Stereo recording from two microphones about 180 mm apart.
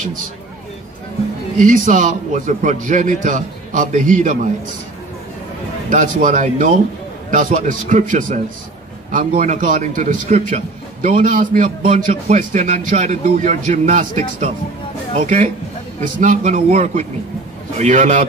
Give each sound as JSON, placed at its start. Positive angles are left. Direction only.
{"t": 1.6, "sound": "a man's voice", "side_deg": -45}
{"t": 5.9, "sound": "a man's voice", "side_deg": -45}